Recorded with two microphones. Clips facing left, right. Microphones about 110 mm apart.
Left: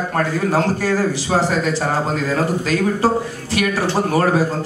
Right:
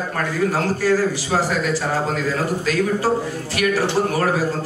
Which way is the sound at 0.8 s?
25° left (ahead or behind).